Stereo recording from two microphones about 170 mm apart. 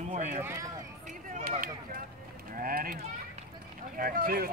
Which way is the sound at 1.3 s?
50° right (ahead or behind).